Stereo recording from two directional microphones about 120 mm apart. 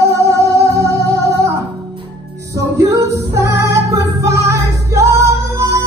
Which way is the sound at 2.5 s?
25° right (ahead or behind).